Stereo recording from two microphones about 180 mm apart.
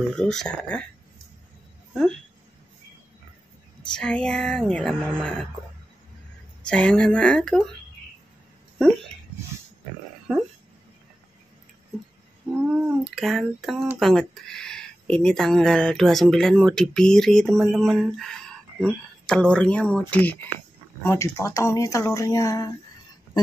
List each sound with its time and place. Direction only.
0.1 s speech: 5° left (ahead or behind)
3.9 s speech: 5° left (ahead or behind)
6.6 s speech: 5° left (ahead or behind)
12.6 s speech: 5° right (ahead or behind); by 22.7 s 20° left (ahead or behind)